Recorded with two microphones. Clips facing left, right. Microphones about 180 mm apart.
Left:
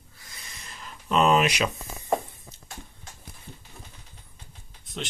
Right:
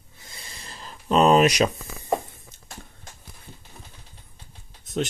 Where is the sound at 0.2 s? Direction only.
30° right (ahead or behind).